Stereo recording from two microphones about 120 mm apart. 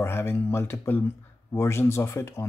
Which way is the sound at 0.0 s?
20° left (ahead or behind).